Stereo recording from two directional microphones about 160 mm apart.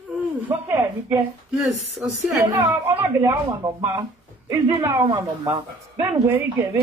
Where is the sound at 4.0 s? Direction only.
25° right (ahead or behind).